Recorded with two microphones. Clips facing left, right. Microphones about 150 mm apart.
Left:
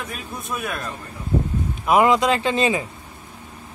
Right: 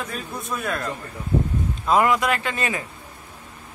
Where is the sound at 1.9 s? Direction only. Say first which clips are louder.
Left 3 dB; 20° left (ahead or behind).